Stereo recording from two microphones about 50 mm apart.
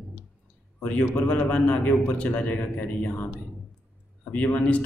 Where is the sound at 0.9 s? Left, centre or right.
Left.